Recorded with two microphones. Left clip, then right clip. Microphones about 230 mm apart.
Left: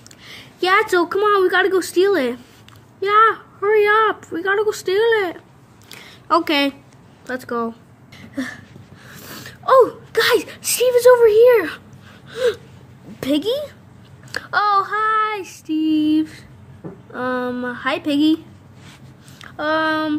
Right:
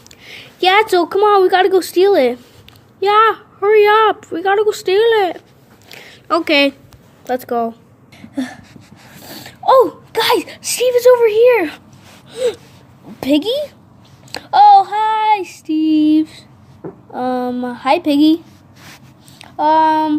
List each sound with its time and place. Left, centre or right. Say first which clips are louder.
0.2 s a woman's voice: right 7 dB; centre
5.9 s a sound: right 1 dB; centre
7.2 s speech: right 6 dB; centre
8.2 s a sound: right 3 dB; centre
9.1 s speech: right 2 dB; centre
12.3 s gasp: right 1 dB; centre
13.2 s a woman's voice: right 4 dB; centre
19.6 s a woman's voice: right 7 dB; centre